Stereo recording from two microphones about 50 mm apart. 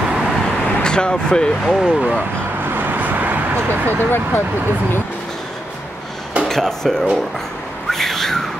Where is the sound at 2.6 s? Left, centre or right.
Right.